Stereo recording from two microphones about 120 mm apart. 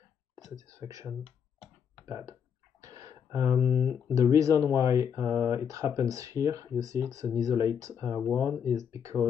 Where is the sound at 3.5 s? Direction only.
40° left (ahead or behind).